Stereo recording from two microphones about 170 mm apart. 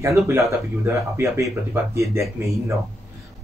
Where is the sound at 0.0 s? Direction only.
15° right (ahead or behind).